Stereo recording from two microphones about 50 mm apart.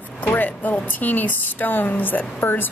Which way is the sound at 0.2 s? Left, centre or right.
Left.